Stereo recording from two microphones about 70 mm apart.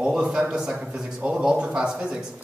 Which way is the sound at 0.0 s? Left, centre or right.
Centre.